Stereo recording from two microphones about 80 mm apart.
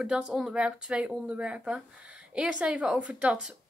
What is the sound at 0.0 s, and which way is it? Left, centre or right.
A woman's voice, centre.